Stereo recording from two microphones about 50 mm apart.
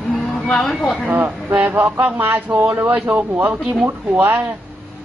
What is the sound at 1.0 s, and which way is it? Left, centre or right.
Speech, right.